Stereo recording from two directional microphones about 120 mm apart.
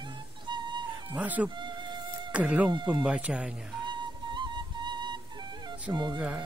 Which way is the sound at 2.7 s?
40° right (ahead or behind).